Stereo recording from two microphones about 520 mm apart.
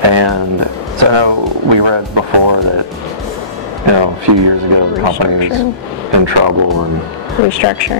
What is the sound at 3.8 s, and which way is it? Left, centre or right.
Speech, right.